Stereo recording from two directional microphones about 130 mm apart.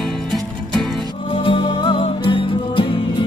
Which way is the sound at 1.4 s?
45° left (ahead or behind).